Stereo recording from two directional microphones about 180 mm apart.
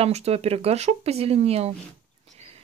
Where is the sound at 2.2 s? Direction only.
35° right (ahead or behind).